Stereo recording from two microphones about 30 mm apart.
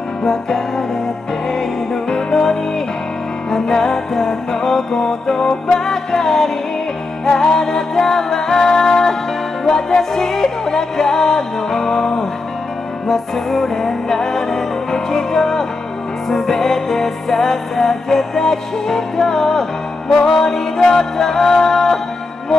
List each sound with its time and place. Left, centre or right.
0.2 s music: centre
13.5 s music: centre